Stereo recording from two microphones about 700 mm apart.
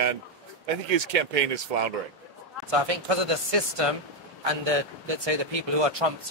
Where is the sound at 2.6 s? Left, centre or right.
Right.